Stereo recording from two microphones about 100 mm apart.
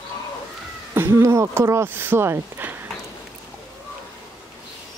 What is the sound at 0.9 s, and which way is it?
Speech, 25° right (ahead or behind).